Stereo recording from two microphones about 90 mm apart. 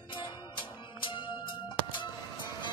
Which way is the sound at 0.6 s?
65° left (ahead or behind).